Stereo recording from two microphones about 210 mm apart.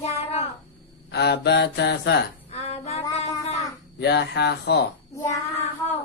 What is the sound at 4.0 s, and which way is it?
Speech, 55° left (ahead or behind).